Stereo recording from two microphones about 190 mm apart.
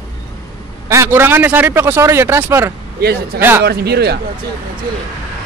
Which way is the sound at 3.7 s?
60° right (ahead or behind).